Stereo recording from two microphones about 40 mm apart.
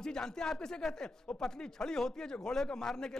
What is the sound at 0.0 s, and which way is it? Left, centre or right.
A man's voice, centre.